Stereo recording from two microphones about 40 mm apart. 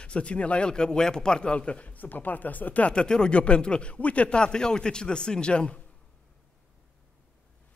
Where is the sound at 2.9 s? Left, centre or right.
Centre.